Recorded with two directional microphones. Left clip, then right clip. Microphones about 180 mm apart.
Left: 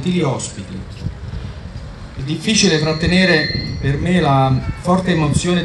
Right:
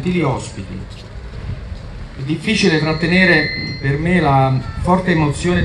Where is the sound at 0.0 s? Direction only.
25° right (ahead or behind).